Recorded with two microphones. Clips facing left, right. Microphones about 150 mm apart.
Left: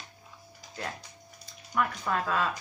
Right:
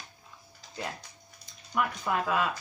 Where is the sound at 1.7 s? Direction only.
15° right (ahead or behind).